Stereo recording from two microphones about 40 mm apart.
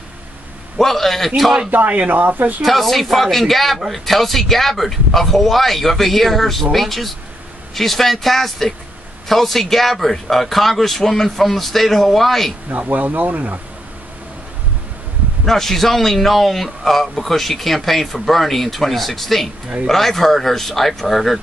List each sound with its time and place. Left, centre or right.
0.7 s a man's voice: centre
1.7 s speech: right
2.6 s a man's voice: centre
12.6 s speech: right
15.4 s a man's voice: centre